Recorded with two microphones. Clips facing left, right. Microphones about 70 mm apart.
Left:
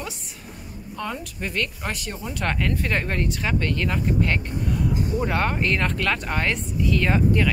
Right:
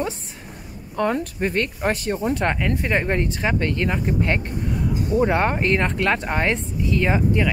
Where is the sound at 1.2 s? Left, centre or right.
Right.